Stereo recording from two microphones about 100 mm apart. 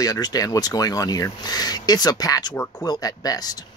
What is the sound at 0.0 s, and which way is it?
Speech, 40° left (ahead or behind).